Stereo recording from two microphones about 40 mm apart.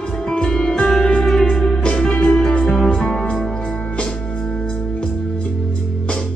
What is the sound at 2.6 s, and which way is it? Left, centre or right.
Music, centre.